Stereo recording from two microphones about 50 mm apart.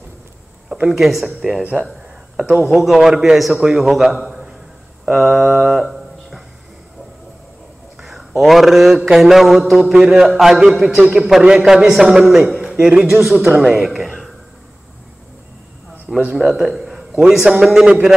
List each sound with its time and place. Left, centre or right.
0.8 s a man's voice: centre
1.6 s speech: right
2.5 s a man's voice: centre
5.7 s mantra: centre
8.0 s a sound: centre
8.4 s a man's voice: centre
16.3 s a man's voice: centre